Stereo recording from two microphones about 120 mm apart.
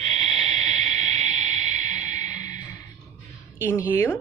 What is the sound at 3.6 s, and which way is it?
Speech, 20° left (ahead or behind).